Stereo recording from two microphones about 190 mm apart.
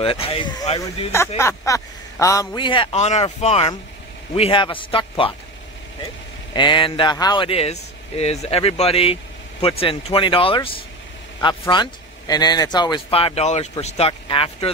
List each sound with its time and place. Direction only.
0.0 s speech: 30° left (ahead or behind)
6.5 s speech: 25° left (ahead or behind)